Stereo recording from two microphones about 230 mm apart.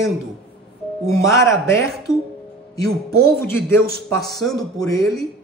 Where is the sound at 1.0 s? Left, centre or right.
Centre.